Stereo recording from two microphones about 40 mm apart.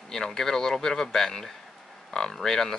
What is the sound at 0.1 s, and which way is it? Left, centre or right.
Speech, centre.